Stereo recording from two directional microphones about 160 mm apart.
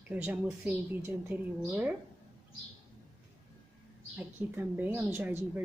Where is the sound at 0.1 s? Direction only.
10° right (ahead or behind).